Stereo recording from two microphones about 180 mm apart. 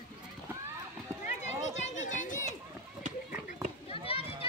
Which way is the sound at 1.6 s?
40° left (ahead or behind).